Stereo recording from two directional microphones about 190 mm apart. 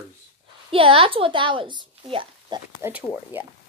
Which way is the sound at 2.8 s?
10° right (ahead or behind).